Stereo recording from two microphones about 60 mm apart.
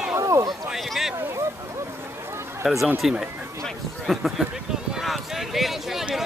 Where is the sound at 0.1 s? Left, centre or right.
Right.